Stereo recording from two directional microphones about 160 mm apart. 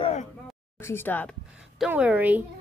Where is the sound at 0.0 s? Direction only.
40° left (ahead or behind).